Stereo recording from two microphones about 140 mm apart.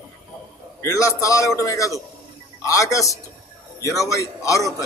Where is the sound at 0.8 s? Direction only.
20° left (ahead or behind).